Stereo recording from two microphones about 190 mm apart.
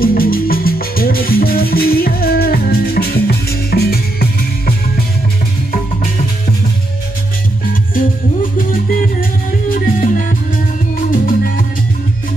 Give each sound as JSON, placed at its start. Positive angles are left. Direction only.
{"t": 0.0, "sound": "music", "side_deg": 50}
{"t": 7.9, "sound": "music", "side_deg": 45}
{"t": 11.1, "sound": "music", "side_deg": 45}